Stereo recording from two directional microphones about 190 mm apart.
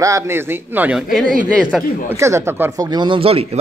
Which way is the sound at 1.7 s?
Centre (ahead or behind).